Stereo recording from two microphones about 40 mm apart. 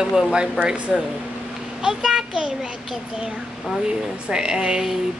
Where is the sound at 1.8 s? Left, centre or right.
Centre.